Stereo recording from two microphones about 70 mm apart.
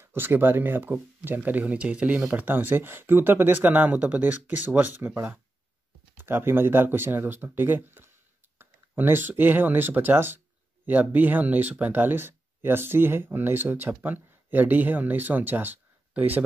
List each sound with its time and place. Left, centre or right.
0.0 s speech: right